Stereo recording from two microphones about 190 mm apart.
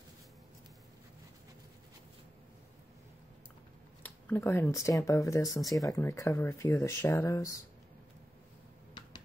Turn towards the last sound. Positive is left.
turn(degrees=15)  # may be behind; listen again after turning